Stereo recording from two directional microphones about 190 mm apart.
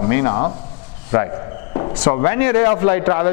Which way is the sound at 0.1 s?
15° left (ahead or behind).